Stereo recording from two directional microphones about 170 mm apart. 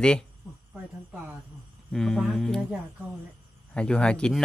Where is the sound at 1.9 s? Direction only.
Centre (ahead or behind).